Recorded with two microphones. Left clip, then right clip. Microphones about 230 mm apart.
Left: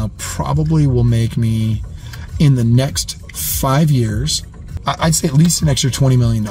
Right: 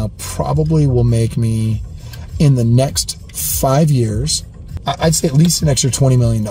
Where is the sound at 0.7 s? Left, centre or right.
Centre.